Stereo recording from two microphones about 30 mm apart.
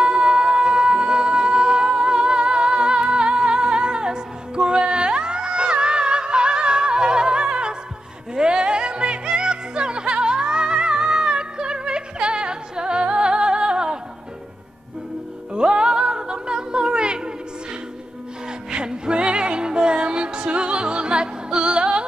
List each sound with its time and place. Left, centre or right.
0.0 s music: right
15.5 s music: right
18.7 s music: right